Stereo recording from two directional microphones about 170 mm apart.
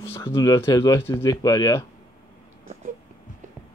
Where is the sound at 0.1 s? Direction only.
15° left (ahead or behind).